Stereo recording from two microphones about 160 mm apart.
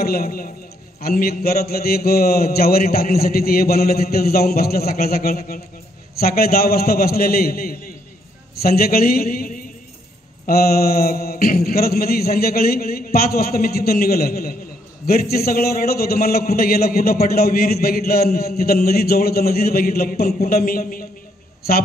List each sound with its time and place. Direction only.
0.0 s a man's voice: 70° left (ahead or behind)